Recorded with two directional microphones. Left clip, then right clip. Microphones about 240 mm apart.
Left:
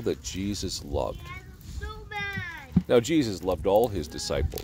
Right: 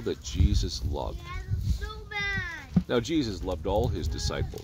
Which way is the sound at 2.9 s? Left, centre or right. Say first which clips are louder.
Left 6 dB; left.